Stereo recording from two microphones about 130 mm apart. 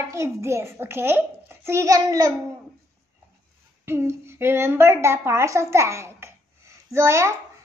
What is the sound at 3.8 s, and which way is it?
A woman's voice, 20° right (ahead or behind).